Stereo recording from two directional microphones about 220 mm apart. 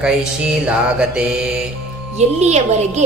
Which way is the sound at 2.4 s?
30° right (ahead or behind).